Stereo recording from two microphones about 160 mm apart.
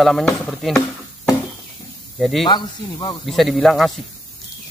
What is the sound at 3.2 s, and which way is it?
Speech, centre (ahead or behind).